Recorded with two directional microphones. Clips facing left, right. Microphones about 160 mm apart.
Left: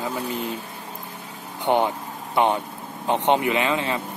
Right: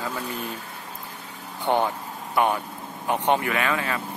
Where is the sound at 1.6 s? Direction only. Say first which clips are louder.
Left 2 dB; 20° left (ahead or behind).